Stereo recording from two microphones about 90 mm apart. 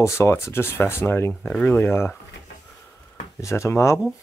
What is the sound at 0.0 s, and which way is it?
Speech, 30° left (ahead or behind).